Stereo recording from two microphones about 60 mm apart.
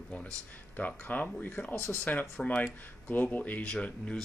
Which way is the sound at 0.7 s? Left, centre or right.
Left.